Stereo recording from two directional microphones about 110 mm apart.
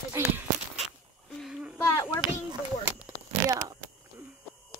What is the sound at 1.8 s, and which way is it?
Speech, 25° left (ahead or behind).